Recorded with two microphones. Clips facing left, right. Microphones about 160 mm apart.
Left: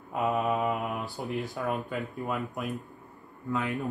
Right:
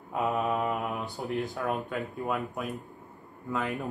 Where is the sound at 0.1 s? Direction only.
Centre (ahead or behind).